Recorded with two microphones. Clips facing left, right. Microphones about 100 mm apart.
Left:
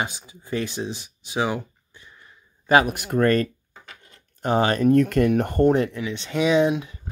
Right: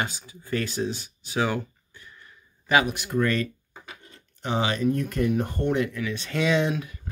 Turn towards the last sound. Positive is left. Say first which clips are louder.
# left 5 dB
turn(degrees=20)  # may be behind; listen again after turning